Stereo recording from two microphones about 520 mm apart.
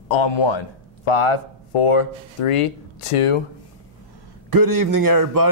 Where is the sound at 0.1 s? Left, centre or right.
Left.